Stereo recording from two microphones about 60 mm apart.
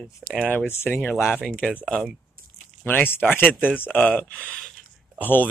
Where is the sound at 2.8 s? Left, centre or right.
Left.